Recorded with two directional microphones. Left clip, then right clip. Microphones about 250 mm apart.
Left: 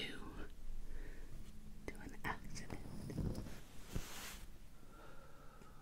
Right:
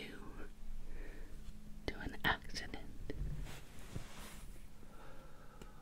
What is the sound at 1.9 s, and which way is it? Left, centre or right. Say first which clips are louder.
Whispering: right 9 dB; right.